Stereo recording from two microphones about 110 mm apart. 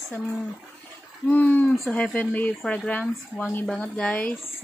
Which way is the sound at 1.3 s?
15° left (ahead or behind).